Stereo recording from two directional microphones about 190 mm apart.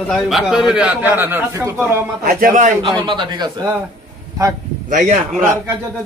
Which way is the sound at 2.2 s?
50° right (ahead or behind).